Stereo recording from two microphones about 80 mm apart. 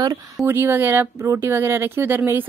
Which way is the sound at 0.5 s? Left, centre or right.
Right.